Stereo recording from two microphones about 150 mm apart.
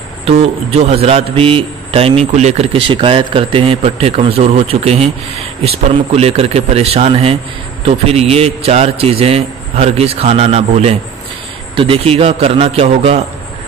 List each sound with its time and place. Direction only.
0.2 s a man's voice: 45° right (ahead or behind)